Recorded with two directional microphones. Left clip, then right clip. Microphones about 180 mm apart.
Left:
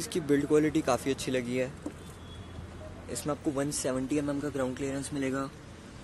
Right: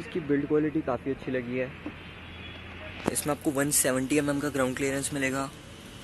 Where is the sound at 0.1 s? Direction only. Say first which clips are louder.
Even; 25° left (ahead or behind).